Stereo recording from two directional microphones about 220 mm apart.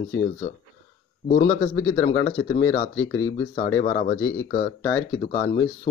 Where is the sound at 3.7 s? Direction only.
25° left (ahead or behind).